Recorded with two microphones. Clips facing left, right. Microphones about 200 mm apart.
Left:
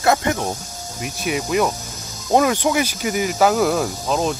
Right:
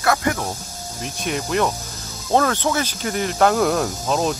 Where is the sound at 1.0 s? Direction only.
5° left (ahead or behind).